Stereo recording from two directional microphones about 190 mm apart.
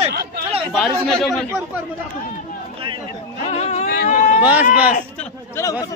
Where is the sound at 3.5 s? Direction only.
35° left (ahead or behind).